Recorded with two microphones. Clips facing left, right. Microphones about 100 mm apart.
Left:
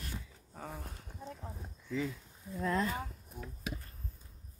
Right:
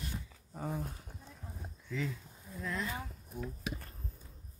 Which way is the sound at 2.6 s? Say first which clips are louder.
Left 6 dB; 40° left (ahead or behind).